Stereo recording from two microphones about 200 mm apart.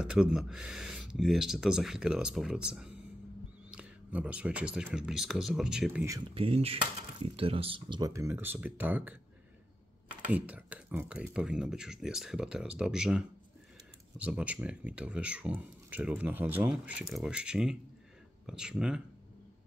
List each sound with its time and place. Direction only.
0.0 s speech: 5° right (ahead or behind)
6.3 s speech: 30° right (ahead or behind); by 9.1 s 10° right (ahead or behind)
10.2 s speech: 5° right (ahead or behind)